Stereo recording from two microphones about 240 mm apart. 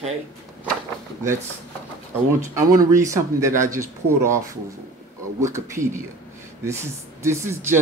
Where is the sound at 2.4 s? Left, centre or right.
Centre.